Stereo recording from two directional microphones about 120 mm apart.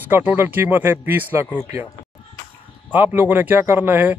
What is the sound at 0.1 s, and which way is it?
Speech, 15° right (ahead or behind).